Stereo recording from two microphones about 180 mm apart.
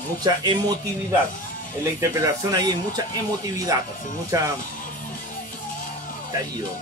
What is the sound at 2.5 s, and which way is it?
Speech, 20° right (ahead or behind).